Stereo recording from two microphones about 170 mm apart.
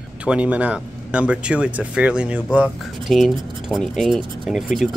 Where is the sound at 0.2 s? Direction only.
5° right (ahead or behind).